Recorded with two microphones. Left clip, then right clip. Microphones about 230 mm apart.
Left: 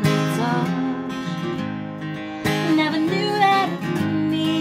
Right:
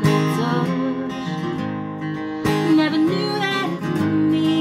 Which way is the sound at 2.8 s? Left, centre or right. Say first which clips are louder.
Right 2 dB; centre.